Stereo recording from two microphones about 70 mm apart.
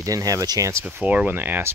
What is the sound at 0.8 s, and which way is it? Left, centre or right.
Speech, right.